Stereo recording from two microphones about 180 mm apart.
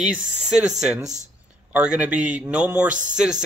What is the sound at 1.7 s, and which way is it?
Speech, 5° right (ahead or behind).